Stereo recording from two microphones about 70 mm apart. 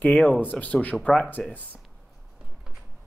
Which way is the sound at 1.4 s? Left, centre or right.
Centre.